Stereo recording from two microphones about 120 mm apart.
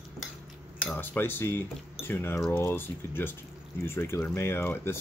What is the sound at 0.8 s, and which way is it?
Speech, 15° left (ahead or behind).